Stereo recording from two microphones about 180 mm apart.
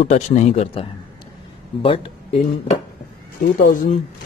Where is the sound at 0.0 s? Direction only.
40° left (ahead or behind).